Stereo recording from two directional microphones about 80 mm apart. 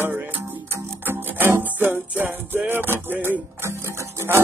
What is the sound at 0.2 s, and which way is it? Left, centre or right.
Music, right.